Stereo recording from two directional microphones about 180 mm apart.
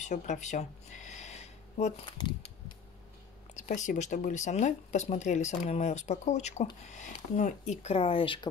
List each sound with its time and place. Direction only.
0.0 s a sound: 40° left (ahead or behind)
2.1 s speech: 25° left (ahead or behind)
3.5 s speech: 45° left (ahead or behind)